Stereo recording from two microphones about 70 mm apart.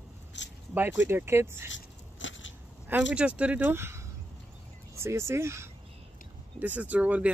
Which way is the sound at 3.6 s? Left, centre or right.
Right.